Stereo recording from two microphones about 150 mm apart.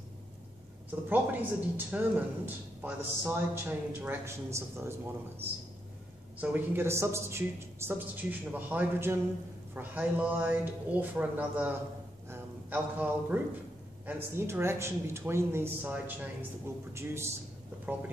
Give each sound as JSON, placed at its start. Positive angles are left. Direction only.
{"t": 1.0, "sound": "a man's voice", "side_deg": -10}
{"t": 6.4, "sound": "a man's voice", "side_deg": -10}
{"t": 12.3, "sound": "a sound", "side_deg": -10}
{"t": 14.0, "sound": "a man's voice", "side_deg": -15}